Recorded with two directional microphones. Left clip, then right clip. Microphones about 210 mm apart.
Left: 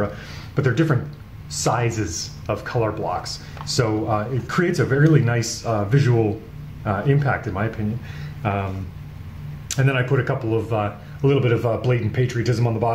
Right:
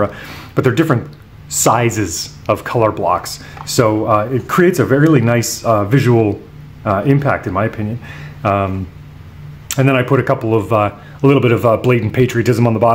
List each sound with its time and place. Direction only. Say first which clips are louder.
0.0 s speech: right 8 dB; 50° right (ahead or behind)
9.7 s speech: right 8 dB; 45° right (ahead or behind)